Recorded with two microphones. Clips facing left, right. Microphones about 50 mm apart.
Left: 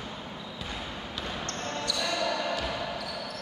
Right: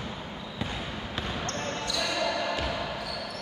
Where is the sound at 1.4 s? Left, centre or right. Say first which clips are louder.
Right 2 dB; right.